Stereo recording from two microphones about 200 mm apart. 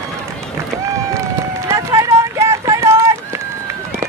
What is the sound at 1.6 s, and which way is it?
Run, 15° right (ahead or behind).